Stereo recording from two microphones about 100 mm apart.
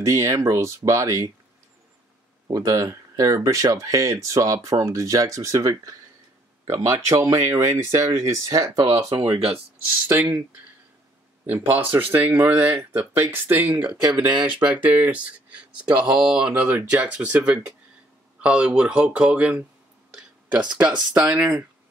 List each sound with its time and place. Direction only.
0.0 s speech: 30° right (ahead or behind)
2.5 s speech: 35° right (ahead or behind)
9.1 s speech: 50° right (ahead or behind)
11.4 s speech: 20° right (ahead or behind)
21.1 s speech: 15° right (ahead or behind)